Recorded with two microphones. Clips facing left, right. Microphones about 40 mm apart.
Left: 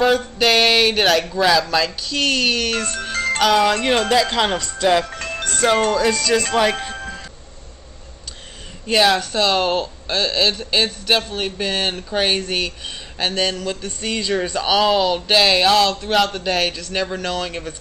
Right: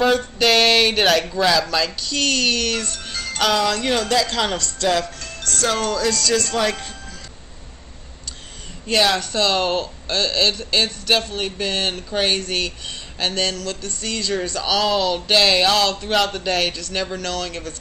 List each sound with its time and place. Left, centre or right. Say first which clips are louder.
0.0 s speech: left 1 dB; centre
3.6 s speech: left 3 dB; left
6.9 s music: left 8 dB; left
8.8 s speech: left 2 dB; centre